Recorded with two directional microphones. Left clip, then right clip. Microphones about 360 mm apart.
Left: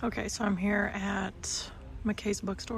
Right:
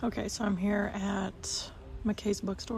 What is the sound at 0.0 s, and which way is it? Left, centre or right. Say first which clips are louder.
Speech: left 1 dB; centre.